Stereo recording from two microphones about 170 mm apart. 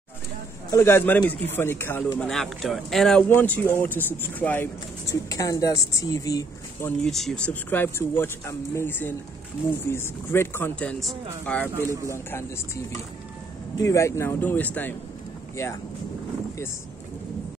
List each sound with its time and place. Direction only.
0.7 s speech: 15° left (ahead or behind)
7.0 s speech: centre (ahead or behind)
11.7 s speech: 15° right (ahead or behind)
12.1 s speech: 15° left (ahead or behind)
13.7 s speech: 15° left (ahead or behind)